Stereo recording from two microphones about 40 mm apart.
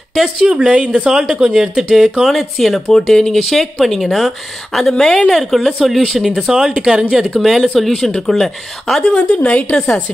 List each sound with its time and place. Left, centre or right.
0.1 s speech: centre
0.6 s a woman's voice: right
1.1 s speech: centre
2.2 s speech: centre
2.9 s speech: centre
6.8 s speech: centre
7.8 s speech: centre
9.1 s a woman's voice: left
9.5 s a woman's voice: left